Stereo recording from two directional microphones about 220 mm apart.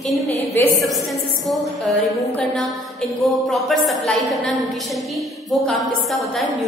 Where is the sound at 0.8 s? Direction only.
Centre (ahead or behind).